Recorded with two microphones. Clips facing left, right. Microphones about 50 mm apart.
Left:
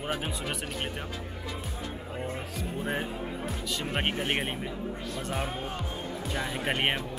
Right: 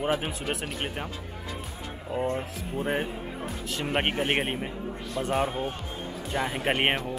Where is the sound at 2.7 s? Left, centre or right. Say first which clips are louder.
Right 4 dB; centre.